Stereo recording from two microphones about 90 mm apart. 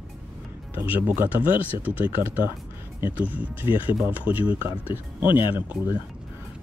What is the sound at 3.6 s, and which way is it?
Speech, 70° left (ahead or behind).